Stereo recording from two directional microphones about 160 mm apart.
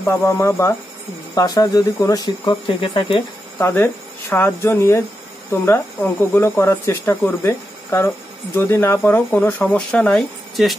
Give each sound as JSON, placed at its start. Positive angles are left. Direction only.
{"t": 0.0, "sound": "speech", "side_deg": 15}
{"t": 3.5, "sound": "speech", "side_deg": 15}